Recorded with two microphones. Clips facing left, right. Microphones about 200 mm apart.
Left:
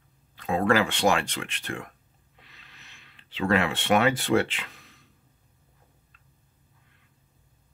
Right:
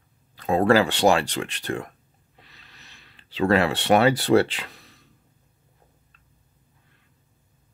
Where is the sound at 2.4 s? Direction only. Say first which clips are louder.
Right 2 dB; 35° right (ahead or behind).